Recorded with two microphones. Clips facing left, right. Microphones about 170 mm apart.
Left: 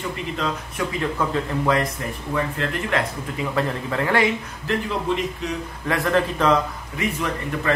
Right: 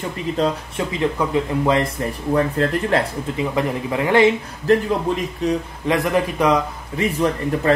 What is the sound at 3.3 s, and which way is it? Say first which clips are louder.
Speech: right 3 dB; 15° right (ahead or behind).